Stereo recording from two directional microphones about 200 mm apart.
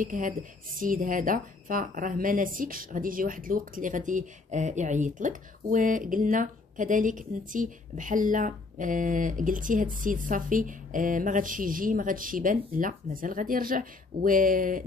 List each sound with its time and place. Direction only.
0.0 s a woman's voice: 40° right (ahead or behind)